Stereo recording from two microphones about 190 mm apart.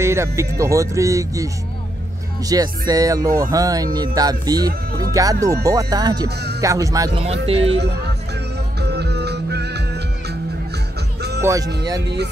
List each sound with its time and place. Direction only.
0.0 s speech: 15° right (ahead or behind)
6.2 s speech: 60° right (ahead or behind)
6.6 s speech: 15° right (ahead or behind)
7.4 s speech: 30° right (ahead or behind)
8.7 s music: 60° right (ahead or behind)
11.4 s speech: 15° right (ahead or behind)